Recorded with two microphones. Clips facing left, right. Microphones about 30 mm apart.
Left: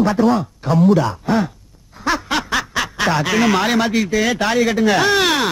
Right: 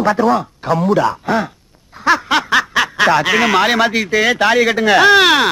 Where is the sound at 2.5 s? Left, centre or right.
Centre.